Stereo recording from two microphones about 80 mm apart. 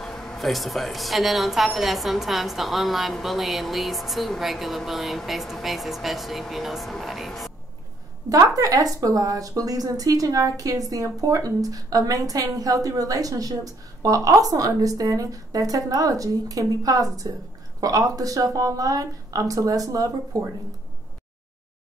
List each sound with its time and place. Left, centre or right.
0.0 s a woman's voice: centre
8.3 s a woman's voice: right